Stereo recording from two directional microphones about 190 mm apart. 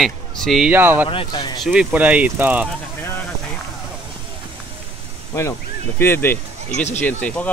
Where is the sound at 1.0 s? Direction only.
25° left (ahead or behind).